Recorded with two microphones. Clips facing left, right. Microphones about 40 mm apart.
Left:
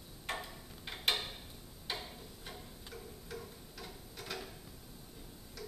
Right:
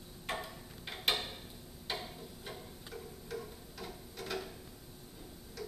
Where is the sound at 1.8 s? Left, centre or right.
Centre.